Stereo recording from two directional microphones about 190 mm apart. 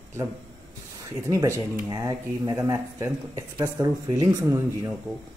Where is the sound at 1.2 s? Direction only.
15° right (ahead or behind).